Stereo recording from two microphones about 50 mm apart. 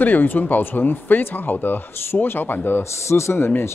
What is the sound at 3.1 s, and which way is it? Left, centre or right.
Speech, left.